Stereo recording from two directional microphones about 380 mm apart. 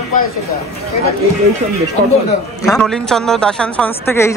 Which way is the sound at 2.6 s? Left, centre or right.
Centre.